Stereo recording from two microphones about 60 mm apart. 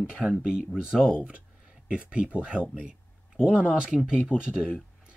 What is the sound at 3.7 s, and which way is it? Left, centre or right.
Speech, centre.